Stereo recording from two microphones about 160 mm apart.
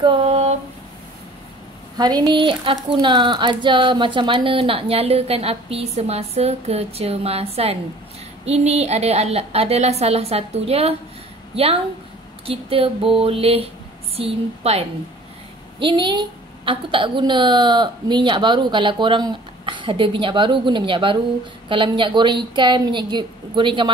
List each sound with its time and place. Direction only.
0.0 s a sound: 35° right (ahead or behind)
2.0 s a woman's voice: 25° right (ahead or behind)
15.8 s a woman's voice: 30° right (ahead or behind)